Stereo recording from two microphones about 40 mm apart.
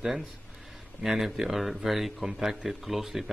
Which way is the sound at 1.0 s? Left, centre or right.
Centre.